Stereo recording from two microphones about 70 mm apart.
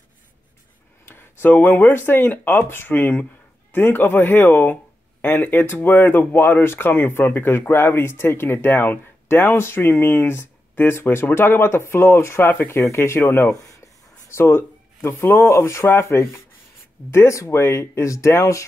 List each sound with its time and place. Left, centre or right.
1.0 s speech: left
12.8 s speech: left
13.5 s speech: left
14.3 s speech: left